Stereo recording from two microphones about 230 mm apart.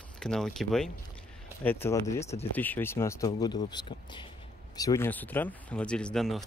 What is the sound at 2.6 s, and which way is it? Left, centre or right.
Speech, centre.